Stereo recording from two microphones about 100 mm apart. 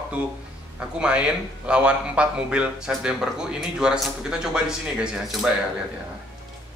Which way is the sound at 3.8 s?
5° right (ahead or behind).